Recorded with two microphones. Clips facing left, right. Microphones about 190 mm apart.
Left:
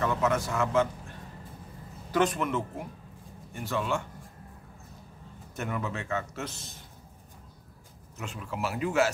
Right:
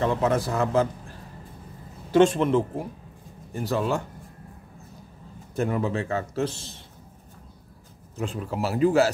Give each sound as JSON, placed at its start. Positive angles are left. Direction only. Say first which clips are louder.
{"t": 0.0, "sound": "a man's voice", "louder": "right 4 dB", "side_deg": -30}
{"t": 2.1, "sound": "a man's voice", "louder": "right 8 dB", "side_deg": -30}
{"t": 5.6, "sound": "a man's voice", "louder": "right 8 dB", "side_deg": -30}
{"t": 8.2, "sound": "a man's voice", "louder": "right 6 dB", "side_deg": -35}